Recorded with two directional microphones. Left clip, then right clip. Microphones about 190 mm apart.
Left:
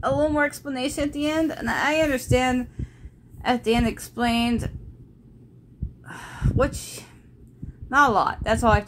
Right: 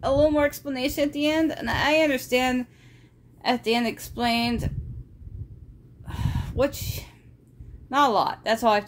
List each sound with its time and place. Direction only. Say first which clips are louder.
0.0 s speech: right 1 dB; 5° right (ahead or behind)
3.6 s speech: left 1 dB; centre (ahead or behind)
6.0 s a sound: left 2 dB; centre (ahead or behind)
7.9 s speech: left 2 dB; centre (ahead or behind)